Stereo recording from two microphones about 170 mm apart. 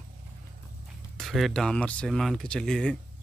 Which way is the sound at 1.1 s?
Centre (ahead or behind).